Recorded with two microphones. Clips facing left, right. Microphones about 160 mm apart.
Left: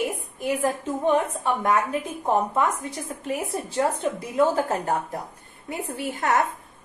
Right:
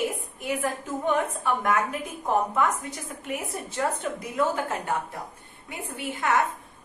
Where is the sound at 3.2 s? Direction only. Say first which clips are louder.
Left 4 dB; 35° left (ahead or behind).